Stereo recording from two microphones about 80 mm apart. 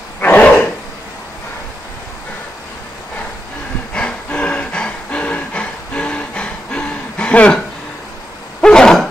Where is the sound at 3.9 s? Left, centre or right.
Centre.